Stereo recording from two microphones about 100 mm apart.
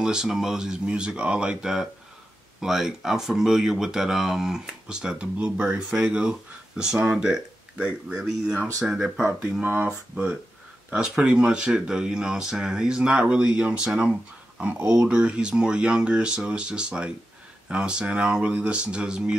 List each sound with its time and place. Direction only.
0.0 s speech: 5° right (ahead or behind)
9.2 s speech: 20° right (ahead or behind)